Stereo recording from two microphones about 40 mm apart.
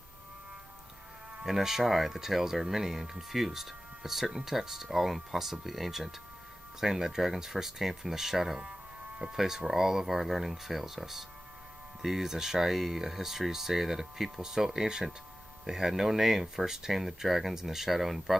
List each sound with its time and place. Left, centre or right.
1.4 s speech: centre